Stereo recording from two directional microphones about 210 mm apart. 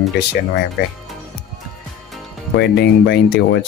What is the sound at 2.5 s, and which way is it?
Speech, 55° left (ahead or behind).